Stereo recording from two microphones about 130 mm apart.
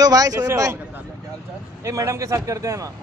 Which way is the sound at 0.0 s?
30° right (ahead or behind).